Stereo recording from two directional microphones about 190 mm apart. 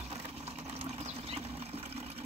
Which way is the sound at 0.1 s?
35° right (ahead or behind).